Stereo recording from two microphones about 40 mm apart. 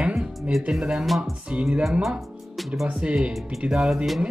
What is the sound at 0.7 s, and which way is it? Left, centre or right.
Speech, right.